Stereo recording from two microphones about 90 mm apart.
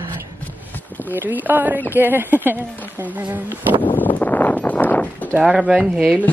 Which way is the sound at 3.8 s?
20° left (ahead or behind).